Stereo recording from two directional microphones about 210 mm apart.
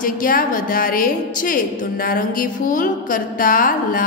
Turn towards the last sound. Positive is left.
turn(degrees=40)  # may be behind; listen again after turning